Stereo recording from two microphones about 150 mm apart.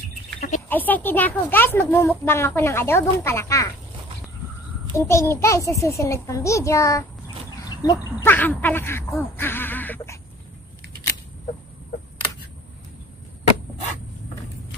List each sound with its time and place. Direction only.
0.7 s speech: 10° left (ahead or behind)
4.9 s a child's voice: 20° left (ahead or behind)